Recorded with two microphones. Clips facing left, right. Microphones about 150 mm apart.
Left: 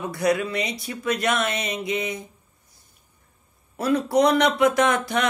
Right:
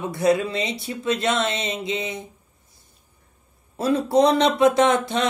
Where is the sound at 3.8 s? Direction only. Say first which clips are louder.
Right 2 dB; 25° right (ahead or behind).